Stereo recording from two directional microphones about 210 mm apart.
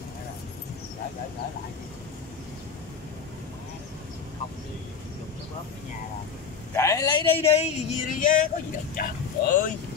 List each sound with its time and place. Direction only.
6.7 s speech: 15° left (ahead or behind); by 9.7 s 40° left (ahead or behind)